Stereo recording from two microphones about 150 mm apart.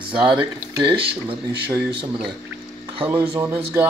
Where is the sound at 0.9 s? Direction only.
35° right (ahead or behind).